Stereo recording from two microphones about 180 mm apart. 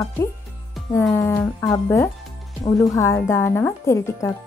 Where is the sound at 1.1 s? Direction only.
15° left (ahead or behind).